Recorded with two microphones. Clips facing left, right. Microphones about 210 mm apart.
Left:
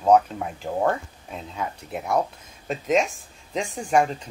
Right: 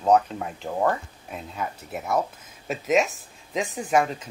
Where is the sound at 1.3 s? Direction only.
5° right (ahead or behind).